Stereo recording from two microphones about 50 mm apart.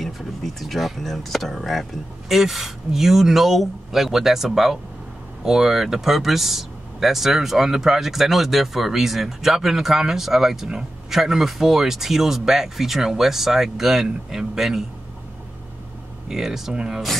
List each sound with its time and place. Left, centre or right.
0.0 s speech: centre
16.3 s speech: centre